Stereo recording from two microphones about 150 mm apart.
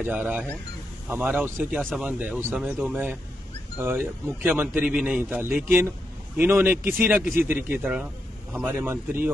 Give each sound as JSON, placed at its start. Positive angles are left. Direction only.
{"t": 0.0, "sound": "a man's voice", "side_deg": -10}
{"t": 1.8, "sound": "speech", "side_deg": 5}
{"t": 2.0, "sound": "a man's voice", "side_deg": -10}